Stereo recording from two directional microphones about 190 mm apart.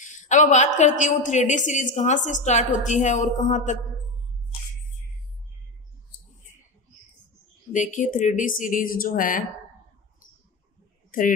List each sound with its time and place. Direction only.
0.0 s a woman's voice: 40° left (ahead or behind)
7.7 s speech: 40° left (ahead or behind)
11.1 s speech: 45° left (ahead or behind)